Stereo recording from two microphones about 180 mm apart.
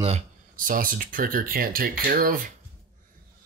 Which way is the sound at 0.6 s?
50° right (ahead or behind).